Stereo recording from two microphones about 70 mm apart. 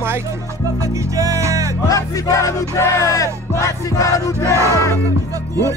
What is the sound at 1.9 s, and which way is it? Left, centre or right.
Music, left.